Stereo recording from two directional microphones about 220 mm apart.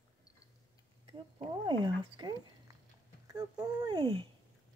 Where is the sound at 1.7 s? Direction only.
20° right (ahead or behind).